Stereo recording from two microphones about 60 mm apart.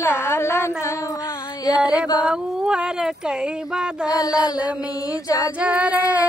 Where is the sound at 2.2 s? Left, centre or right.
Centre.